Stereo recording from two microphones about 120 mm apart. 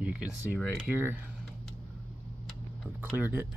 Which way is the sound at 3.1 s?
15° right (ahead or behind).